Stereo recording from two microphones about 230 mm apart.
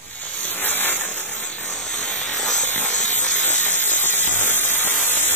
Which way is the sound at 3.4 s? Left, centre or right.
Left.